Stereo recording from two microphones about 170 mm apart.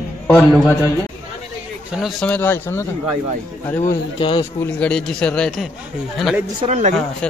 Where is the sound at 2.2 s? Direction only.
10° left (ahead or behind).